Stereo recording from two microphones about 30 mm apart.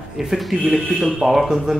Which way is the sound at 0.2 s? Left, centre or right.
Centre.